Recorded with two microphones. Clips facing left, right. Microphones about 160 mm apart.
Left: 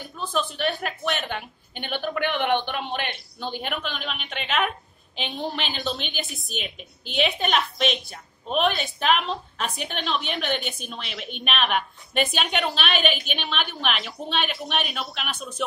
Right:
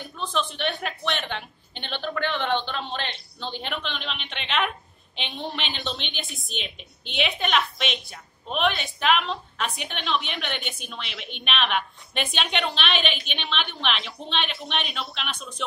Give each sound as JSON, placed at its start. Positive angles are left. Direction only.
{"t": 0.2, "sound": "a woman's voice", "side_deg": 5}
{"t": 1.2, "sound": "a sound", "side_deg": 10}
{"t": 3.3, "sound": "a woman's voice", "side_deg": 10}
{"t": 7.2, "sound": "a woman's voice", "side_deg": 35}
{"t": 12.1, "sound": "a woman's voice", "side_deg": 5}